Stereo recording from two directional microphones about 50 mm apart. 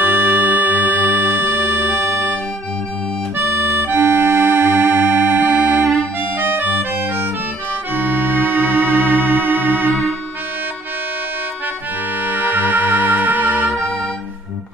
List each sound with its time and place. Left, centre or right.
0.0 s organ: right
3.3 s music: right
6.3 s organ: right
12.2 s music: right